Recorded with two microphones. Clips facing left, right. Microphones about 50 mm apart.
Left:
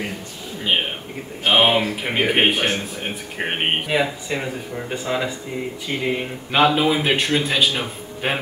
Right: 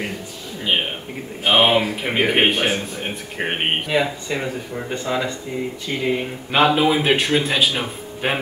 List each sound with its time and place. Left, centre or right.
1.4 s a man's voice: centre